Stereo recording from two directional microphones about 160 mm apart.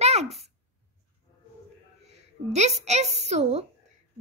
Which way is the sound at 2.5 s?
45° right (ahead or behind).